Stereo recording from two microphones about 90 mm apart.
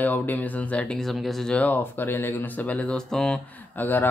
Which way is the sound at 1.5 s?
20° left (ahead or behind).